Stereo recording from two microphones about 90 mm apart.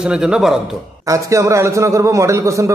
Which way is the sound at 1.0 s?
35° right (ahead or behind).